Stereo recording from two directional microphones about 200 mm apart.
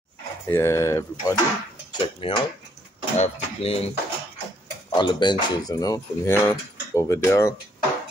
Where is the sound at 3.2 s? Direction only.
30° left (ahead or behind).